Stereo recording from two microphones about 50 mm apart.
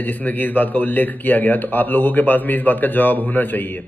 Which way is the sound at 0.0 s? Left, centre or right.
Left.